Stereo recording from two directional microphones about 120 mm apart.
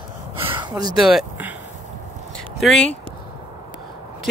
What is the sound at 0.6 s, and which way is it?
Speech, 35° right (ahead or behind).